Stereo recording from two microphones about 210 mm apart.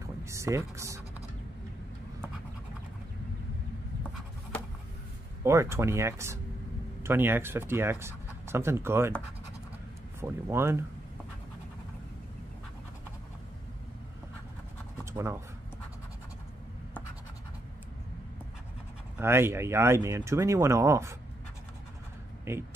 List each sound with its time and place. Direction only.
0.2 s speech: 15° right (ahead or behind)
5.4 s speech: 15° right (ahead or behind)
10.2 s speech: 10° right (ahead or behind)
15.1 s speech: 15° right (ahead or behind)
19.1 s speech: 10° right (ahead or behind)
22.5 s speech: 10° right (ahead or behind)